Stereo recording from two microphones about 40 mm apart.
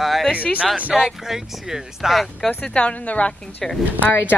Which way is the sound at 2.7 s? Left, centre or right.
Left.